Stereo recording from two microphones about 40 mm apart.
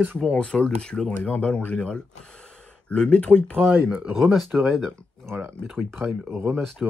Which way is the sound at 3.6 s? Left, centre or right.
Right.